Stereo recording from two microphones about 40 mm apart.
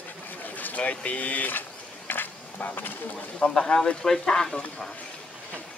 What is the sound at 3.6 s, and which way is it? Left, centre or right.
Speech, left.